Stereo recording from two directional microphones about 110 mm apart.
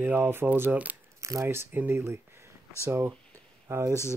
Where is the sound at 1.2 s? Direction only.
30° right (ahead or behind).